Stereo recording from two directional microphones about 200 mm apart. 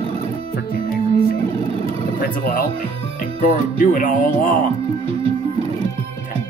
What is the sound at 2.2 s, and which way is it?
Speech, 45° left (ahead or behind).